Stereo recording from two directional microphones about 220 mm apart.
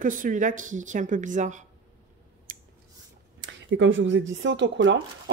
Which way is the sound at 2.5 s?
40° right (ahead or behind).